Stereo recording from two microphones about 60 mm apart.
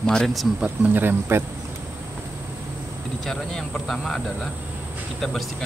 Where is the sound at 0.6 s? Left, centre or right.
Right.